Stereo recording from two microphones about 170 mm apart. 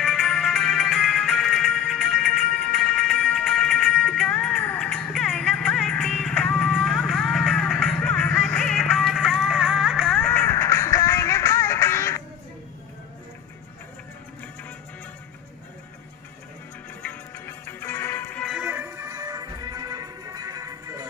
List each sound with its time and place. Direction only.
0.0 s music: centre (ahead or behind)
17.0 s music: 10° left (ahead or behind)
18.6 s music: 10° right (ahead or behind)